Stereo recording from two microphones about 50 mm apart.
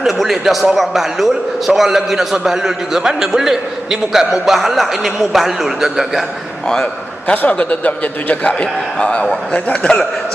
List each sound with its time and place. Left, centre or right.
0.0 s a man's voice: centre
7.2 s a man's voice: left